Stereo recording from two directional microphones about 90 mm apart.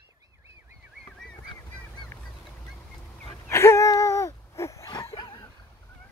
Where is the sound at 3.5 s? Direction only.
30° left (ahead or behind).